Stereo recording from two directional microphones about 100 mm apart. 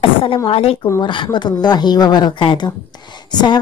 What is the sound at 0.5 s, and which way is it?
Speech, 75° left (ahead or behind).